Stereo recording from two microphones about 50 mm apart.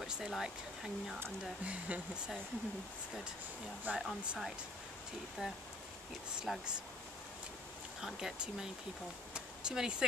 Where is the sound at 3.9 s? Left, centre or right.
Right.